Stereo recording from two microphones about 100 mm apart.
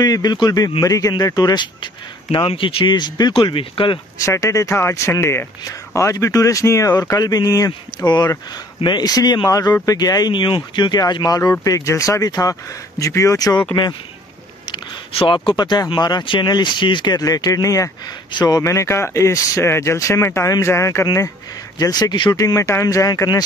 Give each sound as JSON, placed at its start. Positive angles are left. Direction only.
{"t": 0.0, "sound": "speech", "side_deg": 40}
{"t": 2.3, "sound": "speech", "side_deg": 60}
{"t": 4.2, "sound": "speech", "side_deg": 30}
{"t": 15.1, "sound": "speech", "side_deg": 55}
{"t": 18.6, "sound": "speech", "side_deg": 30}
{"t": 22.4, "sound": "speech", "side_deg": 30}